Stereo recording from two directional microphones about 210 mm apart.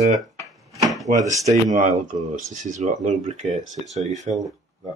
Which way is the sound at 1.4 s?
35° right (ahead or behind).